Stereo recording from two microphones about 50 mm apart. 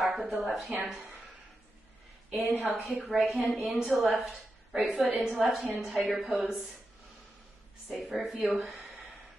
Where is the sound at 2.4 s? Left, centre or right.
Left.